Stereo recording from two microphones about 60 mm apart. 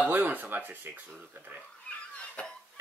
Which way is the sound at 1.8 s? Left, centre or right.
Left.